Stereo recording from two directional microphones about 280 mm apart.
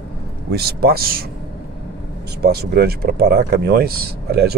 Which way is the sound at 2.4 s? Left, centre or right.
Right.